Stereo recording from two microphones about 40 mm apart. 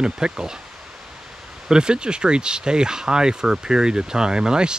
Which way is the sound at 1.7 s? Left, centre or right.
Right.